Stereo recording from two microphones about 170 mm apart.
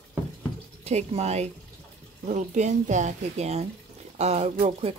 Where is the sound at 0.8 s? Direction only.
40° right (ahead or behind).